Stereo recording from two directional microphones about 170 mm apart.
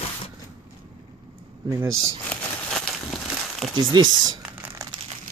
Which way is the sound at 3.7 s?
25° right (ahead or behind).